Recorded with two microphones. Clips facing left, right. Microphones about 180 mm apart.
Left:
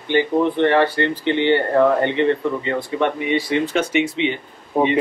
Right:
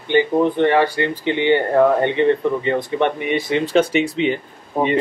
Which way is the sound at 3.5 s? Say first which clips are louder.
Right 3 dB; 35° right (ahead or behind).